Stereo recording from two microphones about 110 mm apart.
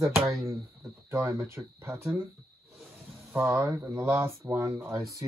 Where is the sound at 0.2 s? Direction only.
25° right (ahead or behind).